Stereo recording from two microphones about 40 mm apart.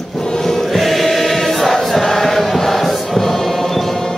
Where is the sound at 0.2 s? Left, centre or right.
Centre.